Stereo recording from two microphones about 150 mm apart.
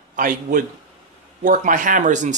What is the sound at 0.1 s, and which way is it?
A man's voice, 65° right (ahead or behind).